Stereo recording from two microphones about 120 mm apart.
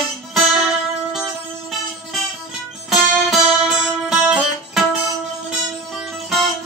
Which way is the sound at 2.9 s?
Centre (ahead or behind).